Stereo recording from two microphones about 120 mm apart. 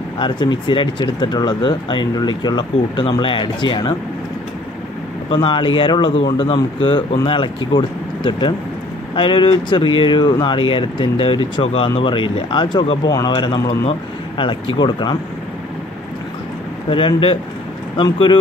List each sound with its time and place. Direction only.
0.2 s speech: 40° left (ahead or behind)
5.3 s speech: 45° left (ahead or behind)
16.9 s speech: 45° left (ahead or behind)